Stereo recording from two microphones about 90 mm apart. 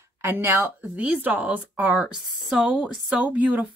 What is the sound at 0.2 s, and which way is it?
A woman's voice, 25° right (ahead or behind).